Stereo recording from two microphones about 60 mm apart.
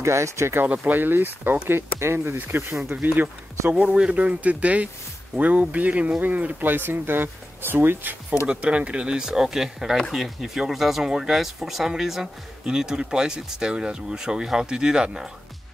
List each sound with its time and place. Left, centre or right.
0.0 s speech: right
0.7 s speech: right
1.7 s speech: right
3.7 s speech: centre
8.5 s speech: centre